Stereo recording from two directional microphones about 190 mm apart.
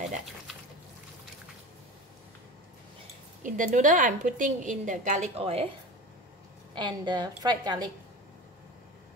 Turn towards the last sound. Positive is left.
turn(degrees=-20)  # may be behind; listen again after turning